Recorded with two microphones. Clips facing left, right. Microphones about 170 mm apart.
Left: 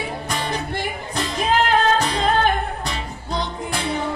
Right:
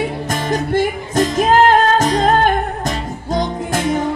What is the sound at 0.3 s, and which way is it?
Music, 45° right (ahead or behind).